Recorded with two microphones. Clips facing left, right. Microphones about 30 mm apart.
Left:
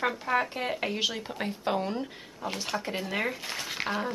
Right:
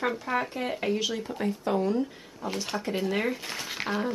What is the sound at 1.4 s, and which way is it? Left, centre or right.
Speech, left.